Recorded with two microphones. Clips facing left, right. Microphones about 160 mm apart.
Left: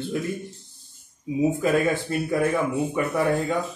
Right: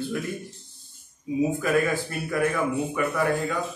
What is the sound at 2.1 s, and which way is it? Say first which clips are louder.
Speech: left 3 dB; 25° left (ahead or behind).